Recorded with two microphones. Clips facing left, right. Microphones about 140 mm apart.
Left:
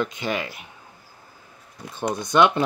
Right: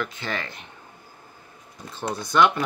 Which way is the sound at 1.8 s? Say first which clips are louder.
Left 3 dB; 15° left (ahead or behind).